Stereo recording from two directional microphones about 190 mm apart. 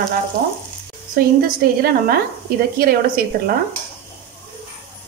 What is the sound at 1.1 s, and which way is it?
A woman's voice, 50° right (ahead or behind).